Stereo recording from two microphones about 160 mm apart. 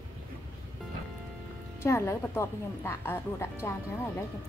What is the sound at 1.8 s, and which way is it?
Speech, 15° left (ahead or behind).